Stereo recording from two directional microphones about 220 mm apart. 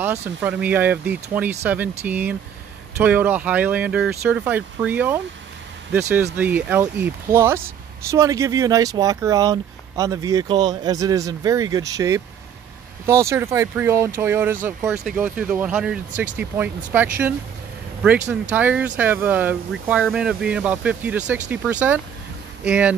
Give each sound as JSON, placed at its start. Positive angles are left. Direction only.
{"t": 0.0, "sound": "speech", "side_deg": -5}
{"t": 6.3, "sound": "speech", "side_deg": -5}
{"t": 18.3, "sound": "speech", "side_deg": -5}